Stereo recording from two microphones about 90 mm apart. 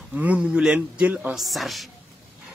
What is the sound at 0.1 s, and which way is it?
Speech, 15° right (ahead or behind).